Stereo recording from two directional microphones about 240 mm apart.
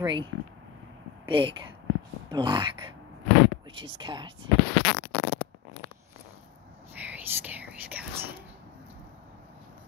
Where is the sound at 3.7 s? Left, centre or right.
Right.